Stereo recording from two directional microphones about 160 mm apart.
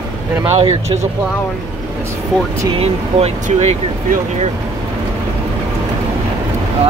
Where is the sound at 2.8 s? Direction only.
40° right (ahead or behind).